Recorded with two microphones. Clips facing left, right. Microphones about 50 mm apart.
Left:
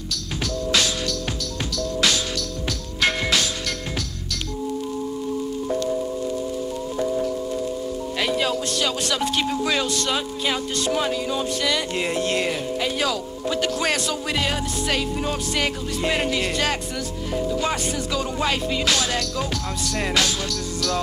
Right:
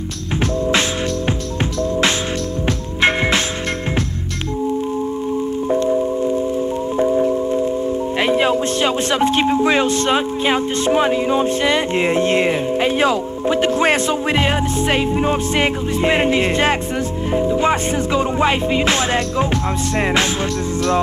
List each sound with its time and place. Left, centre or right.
1.8 s music: right
5.7 s music: right
7.0 s music: right